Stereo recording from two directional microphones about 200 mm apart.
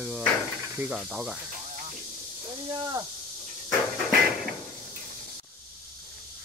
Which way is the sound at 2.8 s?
20° right (ahead or behind).